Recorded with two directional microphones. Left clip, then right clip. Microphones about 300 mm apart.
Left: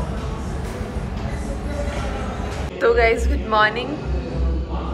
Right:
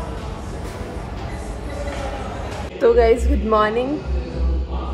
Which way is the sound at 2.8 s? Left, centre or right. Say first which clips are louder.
Right 2 dB; centre.